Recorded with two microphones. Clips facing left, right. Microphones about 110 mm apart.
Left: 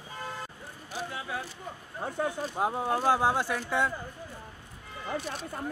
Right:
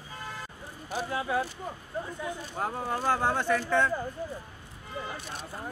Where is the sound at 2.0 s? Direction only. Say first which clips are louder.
Left 10 dB; 70° left (ahead or behind).